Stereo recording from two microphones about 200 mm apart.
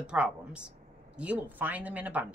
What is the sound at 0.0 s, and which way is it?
A woman's voice, 5° right (ahead or behind).